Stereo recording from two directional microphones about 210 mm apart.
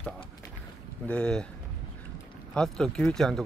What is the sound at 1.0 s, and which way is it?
Speech, 5° left (ahead or behind).